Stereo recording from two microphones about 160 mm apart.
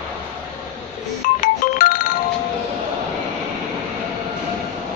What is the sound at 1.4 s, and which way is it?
Music, 55° left (ahead or behind).